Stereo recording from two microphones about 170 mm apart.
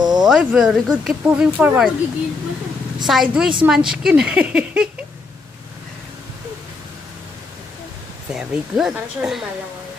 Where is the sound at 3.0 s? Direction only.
Centre (ahead or behind).